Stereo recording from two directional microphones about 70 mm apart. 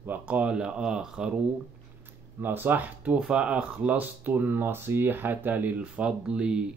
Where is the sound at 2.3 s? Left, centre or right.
Right; by 6.6 s centre.